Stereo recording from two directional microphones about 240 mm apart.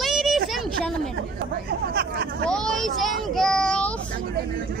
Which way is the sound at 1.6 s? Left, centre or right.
Right.